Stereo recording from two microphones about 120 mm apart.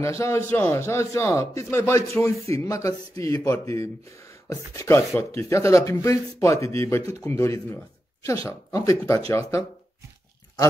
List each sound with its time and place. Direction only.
0.2 s speech: 25° left (ahead or behind)